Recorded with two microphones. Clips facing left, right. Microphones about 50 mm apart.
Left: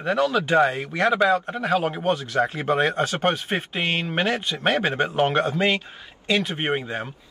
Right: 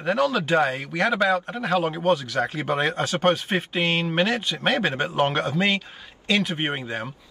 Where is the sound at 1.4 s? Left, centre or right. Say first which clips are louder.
Left 1 dB; centre.